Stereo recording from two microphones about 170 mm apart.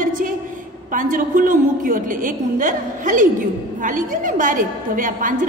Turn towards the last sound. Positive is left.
turn(degrees=-50)  # may be behind; listen again after turning